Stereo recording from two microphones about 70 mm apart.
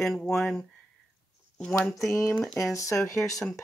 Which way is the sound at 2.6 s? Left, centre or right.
Left.